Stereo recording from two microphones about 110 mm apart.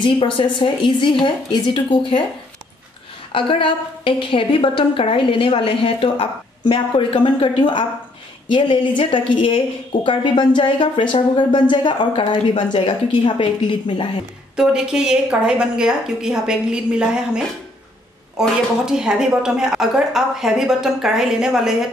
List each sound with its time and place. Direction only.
0.0 s a woman's voice: 50° left (ahead or behind)
3.3 s a woman's voice: 50° left (ahead or behind)
14.6 s a woman's voice: 5° right (ahead or behind)
18.9 s a woman's voice: 5° right (ahead or behind)